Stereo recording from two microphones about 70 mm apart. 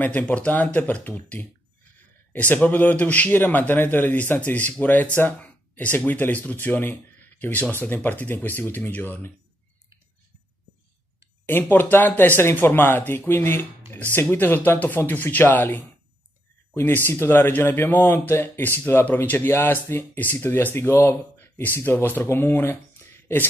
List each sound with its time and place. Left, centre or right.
0.0 s a man's voice: left
11.4 s a man's voice: left
16.7 s speech: left